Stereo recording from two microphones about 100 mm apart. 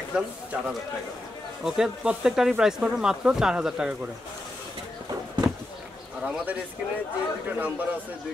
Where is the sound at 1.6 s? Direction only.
5° right (ahead or behind).